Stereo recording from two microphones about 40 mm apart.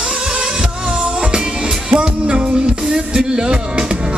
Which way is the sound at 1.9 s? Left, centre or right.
Right.